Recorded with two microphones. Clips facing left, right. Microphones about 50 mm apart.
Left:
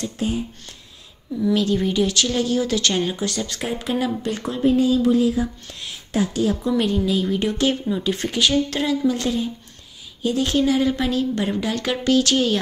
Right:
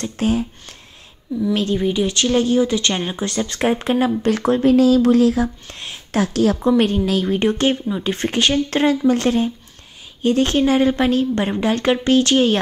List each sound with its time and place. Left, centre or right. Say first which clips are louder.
0.2 s speech: right 6 dB; right
1.5 s a woman's voice: even; right
1.8 s a woman's voice: right 1 dB; centre
2.0 s a woman's voice: right 4 dB; right
4.3 s speech: right 5 dB; right
4.7 s speech: right 4 dB; right
5.7 s a sound: right 2 dB; right
6.1 s speech: right 4 dB; right
6.8 s a woman's voice: right 3 dB; right
9.0 s a woman's voice: right 5 dB; right